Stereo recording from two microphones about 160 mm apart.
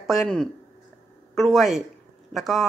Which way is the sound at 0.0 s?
Centre (ahead or behind).